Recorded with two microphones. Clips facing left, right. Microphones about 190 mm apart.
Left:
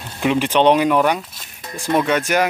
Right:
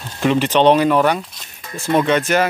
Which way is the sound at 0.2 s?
10° left (ahead or behind).